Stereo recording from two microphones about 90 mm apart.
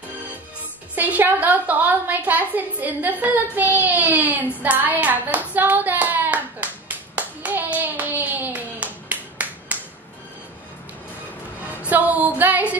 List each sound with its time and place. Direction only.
0.9 s a woman's voice: 20° right (ahead or behind)
5.5 s clapping: 20° right (ahead or behind)
11.8 s music: 20° right (ahead or behind)